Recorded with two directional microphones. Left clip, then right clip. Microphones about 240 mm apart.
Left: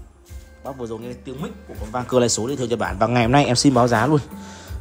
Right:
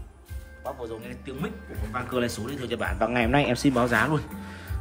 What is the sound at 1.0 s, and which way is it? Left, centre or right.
Speech, centre.